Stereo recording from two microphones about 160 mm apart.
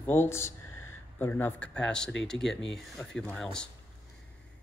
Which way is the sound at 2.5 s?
90° left.